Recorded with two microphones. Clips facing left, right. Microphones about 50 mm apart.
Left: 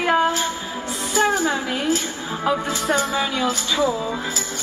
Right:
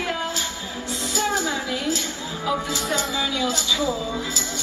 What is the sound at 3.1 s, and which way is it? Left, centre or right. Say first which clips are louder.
Speech: left 2 dB; left.